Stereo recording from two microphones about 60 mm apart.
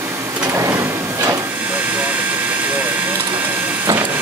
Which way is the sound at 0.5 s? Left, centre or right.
Right.